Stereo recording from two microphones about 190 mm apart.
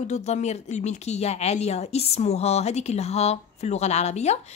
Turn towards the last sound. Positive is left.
turn(degrees=35)  # may be behind; listen again after turning